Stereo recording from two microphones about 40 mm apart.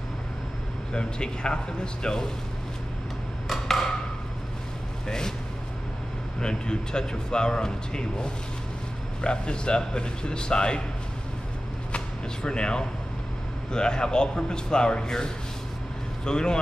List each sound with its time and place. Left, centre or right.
0.9 s speech: left
3.4 s a sound: centre
5.0 s speech: centre
6.4 s speech: centre
12.4 s speech: left